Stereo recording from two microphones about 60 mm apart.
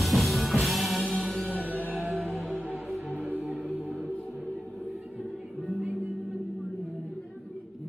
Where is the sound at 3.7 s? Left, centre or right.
Right.